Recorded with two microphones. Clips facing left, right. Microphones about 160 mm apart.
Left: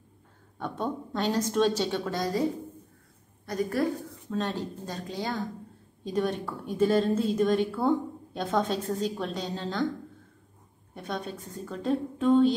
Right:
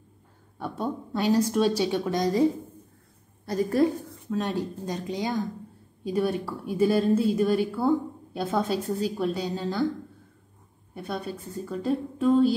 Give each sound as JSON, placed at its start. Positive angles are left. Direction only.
{"t": 0.6, "sound": "a woman's voice", "side_deg": -10}
{"t": 3.4, "sound": "a woman's voice", "side_deg": -30}
{"t": 4.3, "sound": "a woman's voice", "side_deg": -10}
{"t": 11.0, "sound": "a woman's voice", "side_deg": -5}